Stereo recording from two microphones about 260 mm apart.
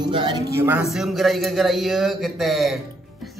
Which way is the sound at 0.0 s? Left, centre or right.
Centre.